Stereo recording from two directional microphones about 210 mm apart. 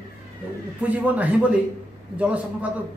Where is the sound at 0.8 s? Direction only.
5° right (ahead or behind).